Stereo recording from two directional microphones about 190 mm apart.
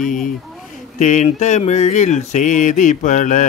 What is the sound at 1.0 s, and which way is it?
Mantra, 40° left (ahead or behind).